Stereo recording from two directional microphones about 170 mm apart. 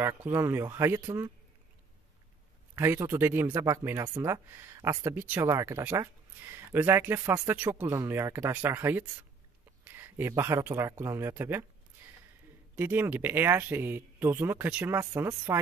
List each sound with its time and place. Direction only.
0.0 s speech: 15° right (ahead or behind)
2.7 s speech: 15° right (ahead or behind)
12.7 s speech: 10° right (ahead or behind)